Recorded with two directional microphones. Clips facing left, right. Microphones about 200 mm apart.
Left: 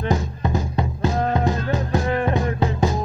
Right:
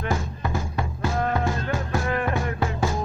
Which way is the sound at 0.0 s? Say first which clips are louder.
Left 5 dB; 20° left (ahead or behind).